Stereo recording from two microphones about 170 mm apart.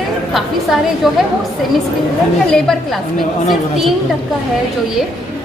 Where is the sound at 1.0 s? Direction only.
Centre (ahead or behind).